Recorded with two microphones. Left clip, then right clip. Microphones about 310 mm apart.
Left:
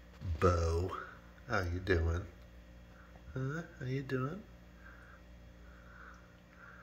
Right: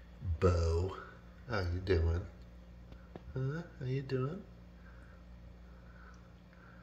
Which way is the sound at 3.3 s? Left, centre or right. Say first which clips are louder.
Left 1 dB; centre.